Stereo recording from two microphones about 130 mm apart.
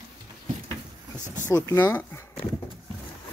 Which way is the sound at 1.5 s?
25° left (ahead or behind).